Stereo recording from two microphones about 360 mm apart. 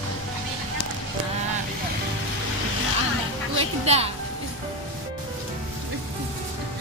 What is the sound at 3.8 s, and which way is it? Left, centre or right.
Music, centre.